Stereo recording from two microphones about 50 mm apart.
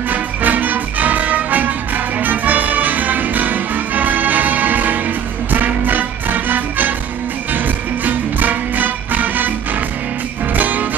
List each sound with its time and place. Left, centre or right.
0.1 s music: right